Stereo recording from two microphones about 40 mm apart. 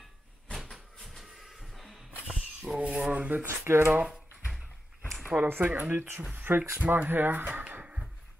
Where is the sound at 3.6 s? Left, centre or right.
Right.